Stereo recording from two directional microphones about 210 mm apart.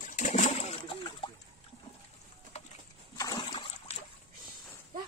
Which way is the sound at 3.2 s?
20° left (ahead or behind).